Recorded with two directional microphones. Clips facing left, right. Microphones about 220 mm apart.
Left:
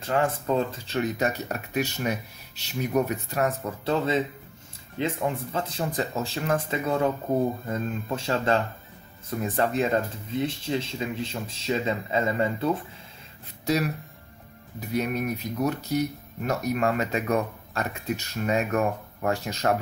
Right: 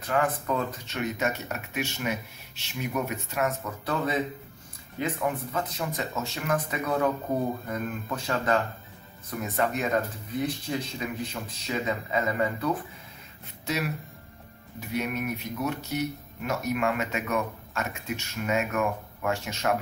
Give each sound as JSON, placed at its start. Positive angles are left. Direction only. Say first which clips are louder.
{"t": 0.0, "sound": "speech", "louder": "left 2 dB", "side_deg": 25}
{"t": 14.8, "sound": "speech", "louder": "left 3 dB", "side_deg": 35}